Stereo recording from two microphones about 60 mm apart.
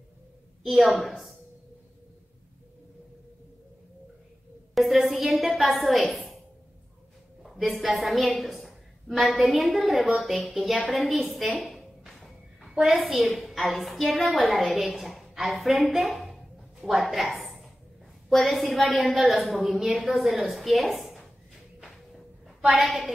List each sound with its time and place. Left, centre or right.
0.7 s a woman's voice: centre
4.7 s a woman's voice: centre
7.4 s a woman's voice: centre
12.8 s a child's voice: centre
13.1 s a woman's voice: centre
22.7 s a woman's voice: centre